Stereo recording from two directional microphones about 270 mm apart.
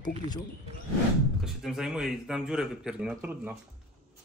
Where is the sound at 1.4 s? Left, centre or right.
Centre.